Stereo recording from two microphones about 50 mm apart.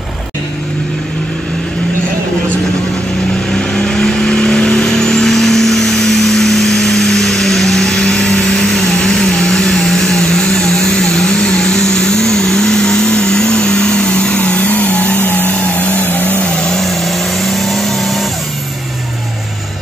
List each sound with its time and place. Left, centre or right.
3.5 s vehicle: centre; by 15.1 s left
15.1 s vehicle: left
16.4 s vehicle: centre
16.8 s vehicle: centre